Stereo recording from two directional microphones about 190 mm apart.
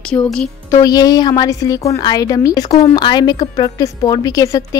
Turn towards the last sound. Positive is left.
turn(degrees=20)  # may be behind; listen again after turning